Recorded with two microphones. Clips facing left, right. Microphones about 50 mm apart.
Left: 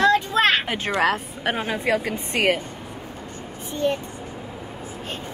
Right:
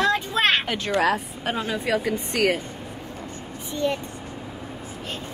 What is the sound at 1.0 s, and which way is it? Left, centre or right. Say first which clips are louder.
A woman's voice: left 1 dB; left.